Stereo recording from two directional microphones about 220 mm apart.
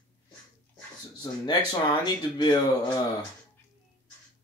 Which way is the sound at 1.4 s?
20° left (ahead or behind).